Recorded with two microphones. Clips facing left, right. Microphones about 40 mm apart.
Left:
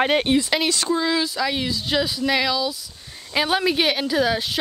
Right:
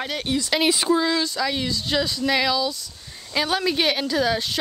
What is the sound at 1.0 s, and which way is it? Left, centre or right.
Speech, centre.